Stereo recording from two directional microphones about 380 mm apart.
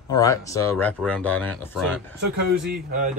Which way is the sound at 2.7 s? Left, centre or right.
Right.